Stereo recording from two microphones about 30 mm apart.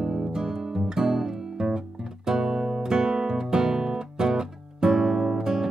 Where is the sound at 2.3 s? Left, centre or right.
Centre.